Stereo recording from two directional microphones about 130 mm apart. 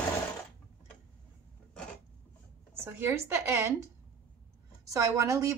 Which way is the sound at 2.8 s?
20° right (ahead or behind).